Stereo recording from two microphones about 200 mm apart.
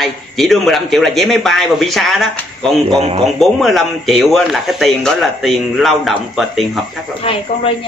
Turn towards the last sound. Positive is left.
turn(degrees=30)  # may be behind; listen again after turning